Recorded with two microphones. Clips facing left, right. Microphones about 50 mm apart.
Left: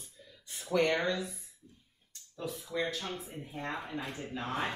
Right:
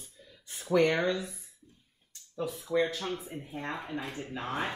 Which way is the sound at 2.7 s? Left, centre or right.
Right.